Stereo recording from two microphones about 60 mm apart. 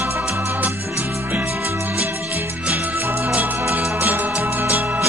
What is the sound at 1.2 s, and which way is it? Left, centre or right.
Music, right.